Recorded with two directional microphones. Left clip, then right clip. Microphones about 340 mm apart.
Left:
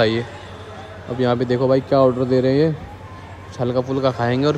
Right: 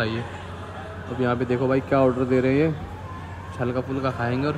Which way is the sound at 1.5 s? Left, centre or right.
Right.